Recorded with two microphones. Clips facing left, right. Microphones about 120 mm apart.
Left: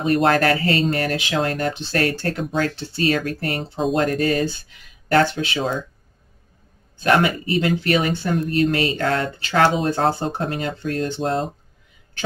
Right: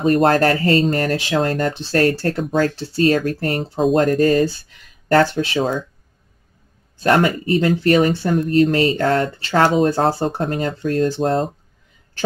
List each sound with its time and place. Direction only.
0.0 s speech: 35° right (ahead or behind)
7.0 s speech: 40° right (ahead or behind)